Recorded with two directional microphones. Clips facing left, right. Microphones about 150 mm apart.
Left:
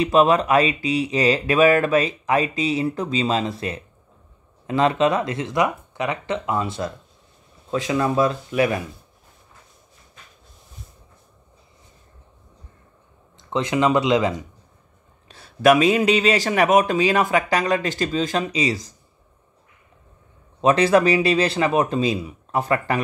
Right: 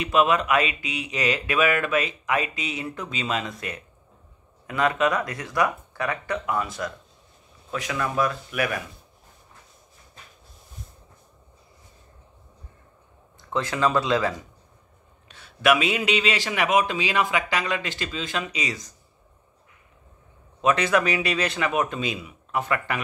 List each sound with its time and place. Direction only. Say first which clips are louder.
0.0 s speech: left 5 dB; 35° left (ahead or behind)
13.4 s speech: left 4 dB; 20° left (ahead or behind)
15.2 s speech: left 5 dB; 35° left (ahead or behind)
20.6 s speech: left 6 dB; 30° left (ahead or behind)